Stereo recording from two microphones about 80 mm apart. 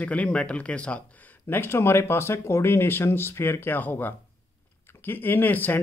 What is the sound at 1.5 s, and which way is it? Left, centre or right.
Speech, left.